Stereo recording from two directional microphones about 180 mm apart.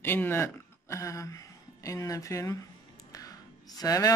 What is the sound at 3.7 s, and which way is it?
Speech, 20° left (ahead or behind).